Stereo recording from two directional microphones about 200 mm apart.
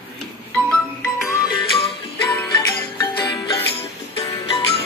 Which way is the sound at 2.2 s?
20° left (ahead or behind).